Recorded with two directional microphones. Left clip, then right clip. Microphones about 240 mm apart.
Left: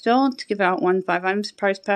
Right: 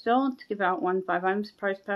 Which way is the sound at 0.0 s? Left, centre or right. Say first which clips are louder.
Left 6 dB; left.